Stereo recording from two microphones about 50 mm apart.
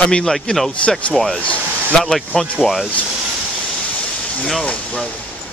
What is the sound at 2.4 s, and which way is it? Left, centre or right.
Speech, centre.